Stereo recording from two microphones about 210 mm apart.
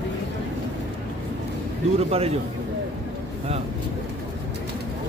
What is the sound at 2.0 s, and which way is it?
Speech, 30° right (ahead or behind).